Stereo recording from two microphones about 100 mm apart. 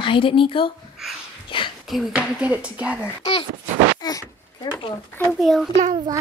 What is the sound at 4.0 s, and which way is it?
Speech, 40° left (ahead or behind).